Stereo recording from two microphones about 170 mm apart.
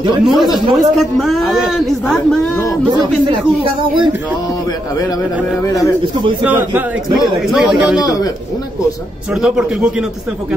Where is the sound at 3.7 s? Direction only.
30° right (ahead or behind).